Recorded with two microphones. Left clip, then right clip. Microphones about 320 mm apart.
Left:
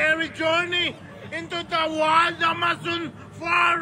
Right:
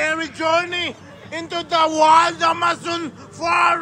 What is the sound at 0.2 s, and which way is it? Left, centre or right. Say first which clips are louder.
A man's voice: right 3 dB; centre.